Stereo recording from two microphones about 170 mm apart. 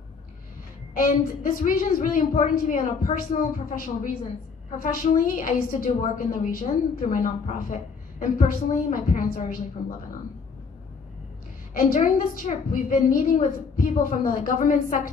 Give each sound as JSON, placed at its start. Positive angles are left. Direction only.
{"t": 0.9, "sound": "a woman's voice", "side_deg": 55}
{"t": 11.7, "sound": "a woman's voice", "side_deg": 50}